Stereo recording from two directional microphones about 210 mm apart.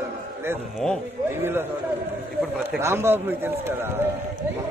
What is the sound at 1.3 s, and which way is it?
Speech, 10° right (ahead or behind).